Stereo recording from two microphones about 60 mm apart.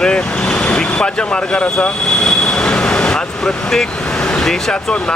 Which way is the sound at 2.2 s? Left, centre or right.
Centre.